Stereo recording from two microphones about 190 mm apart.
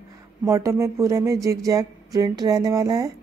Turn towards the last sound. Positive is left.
turn(degrees=-20)  # may be behind; listen again after turning